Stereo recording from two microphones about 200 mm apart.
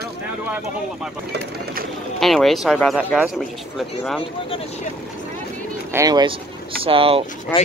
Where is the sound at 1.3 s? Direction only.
50° right (ahead or behind).